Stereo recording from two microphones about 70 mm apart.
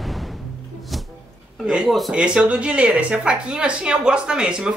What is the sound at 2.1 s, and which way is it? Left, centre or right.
A man's voice, centre.